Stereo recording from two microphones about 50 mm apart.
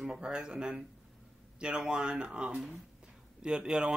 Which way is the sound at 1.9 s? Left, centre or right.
Centre.